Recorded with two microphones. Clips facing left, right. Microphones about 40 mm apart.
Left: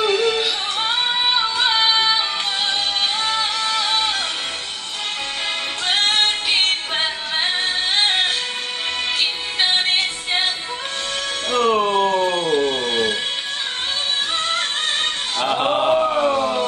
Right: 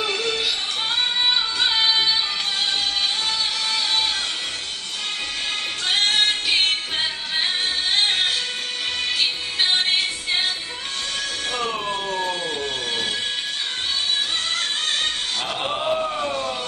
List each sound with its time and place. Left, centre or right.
0.0 s music: centre
3.6 s music: left
5.9 s music: left
11.5 s music: left
12.1 s a sound: left
15.4 s a sound: left